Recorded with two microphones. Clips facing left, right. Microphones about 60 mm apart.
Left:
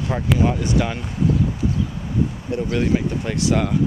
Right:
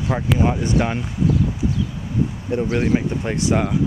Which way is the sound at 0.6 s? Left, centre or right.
Right.